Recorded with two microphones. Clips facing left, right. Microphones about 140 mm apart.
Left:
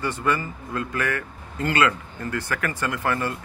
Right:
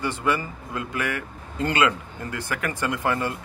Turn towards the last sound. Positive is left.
turn(degrees=-20)  # may be behind; listen again after turning